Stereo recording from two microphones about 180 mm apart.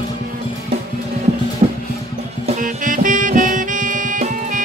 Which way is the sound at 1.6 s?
40° right (ahead or behind).